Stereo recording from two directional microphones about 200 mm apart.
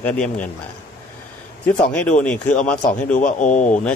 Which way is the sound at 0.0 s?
5° left (ahead or behind).